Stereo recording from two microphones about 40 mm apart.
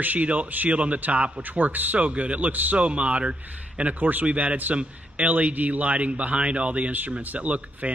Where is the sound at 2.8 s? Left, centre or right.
Right.